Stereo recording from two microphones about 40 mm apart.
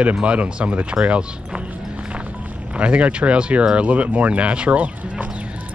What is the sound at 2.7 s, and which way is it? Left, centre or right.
Speech, right.